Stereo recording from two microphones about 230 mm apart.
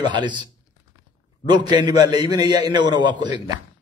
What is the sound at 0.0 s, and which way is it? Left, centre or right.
Speech, centre.